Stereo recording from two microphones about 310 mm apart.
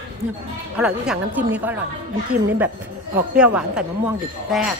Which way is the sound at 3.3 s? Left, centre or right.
Centre.